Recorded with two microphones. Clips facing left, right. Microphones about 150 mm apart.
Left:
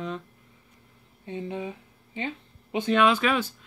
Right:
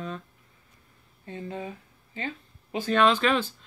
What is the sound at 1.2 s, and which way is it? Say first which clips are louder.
Speech: left 3 dB; 20° left (ahead or behind).